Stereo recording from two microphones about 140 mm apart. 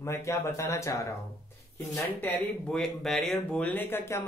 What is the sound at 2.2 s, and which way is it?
A man's voice, 5° left (ahead or behind).